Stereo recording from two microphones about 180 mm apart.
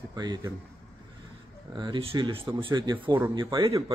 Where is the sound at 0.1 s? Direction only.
20° right (ahead or behind).